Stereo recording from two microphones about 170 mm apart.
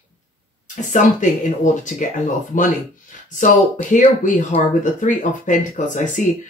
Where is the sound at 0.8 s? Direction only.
50° left (ahead or behind).